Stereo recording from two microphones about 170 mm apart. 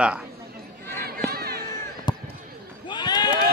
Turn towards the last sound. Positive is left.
turn(degrees=25)  # may be behind; listen again after turning